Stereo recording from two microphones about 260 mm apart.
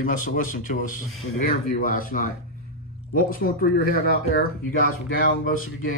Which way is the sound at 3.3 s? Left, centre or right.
Left.